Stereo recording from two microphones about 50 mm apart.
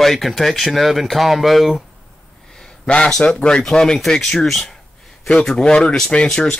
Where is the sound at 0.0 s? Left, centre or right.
Centre.